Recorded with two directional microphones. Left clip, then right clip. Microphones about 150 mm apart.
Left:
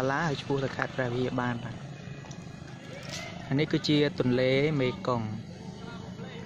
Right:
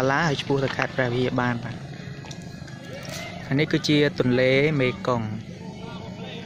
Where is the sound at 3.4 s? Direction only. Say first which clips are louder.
Right 5 dB; 5° left (ahead or behind).